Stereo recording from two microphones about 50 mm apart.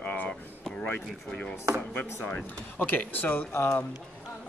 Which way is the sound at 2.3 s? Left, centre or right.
Left.